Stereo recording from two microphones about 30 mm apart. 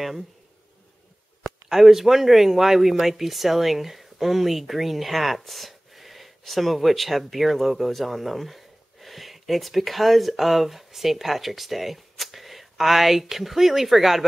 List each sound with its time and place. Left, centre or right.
1.7 s speech: centre